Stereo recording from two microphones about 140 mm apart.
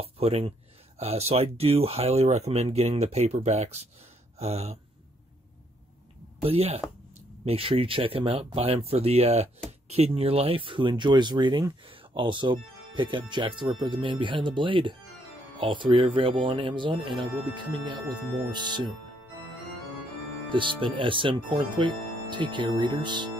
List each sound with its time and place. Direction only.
0.0 s a sound: 45° right (ahead or behind)
0.9 s speech: 50° right (ahead or behind)
6.4 s speech: 45° right (ahead or behind)
20.5 s speech: 35° right (ahead or behind)